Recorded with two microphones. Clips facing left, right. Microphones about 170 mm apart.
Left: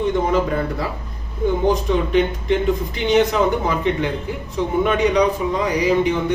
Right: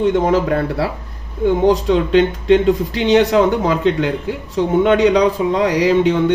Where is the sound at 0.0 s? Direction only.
80° right.